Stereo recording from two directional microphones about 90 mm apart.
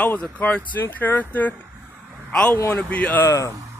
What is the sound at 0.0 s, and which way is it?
Speech, 15° left (ahead or behind).